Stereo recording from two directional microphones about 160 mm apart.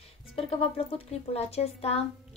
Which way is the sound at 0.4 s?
35° left (ahead or behind).